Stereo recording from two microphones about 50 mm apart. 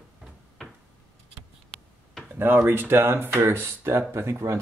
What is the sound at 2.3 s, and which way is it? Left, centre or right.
Speech, right.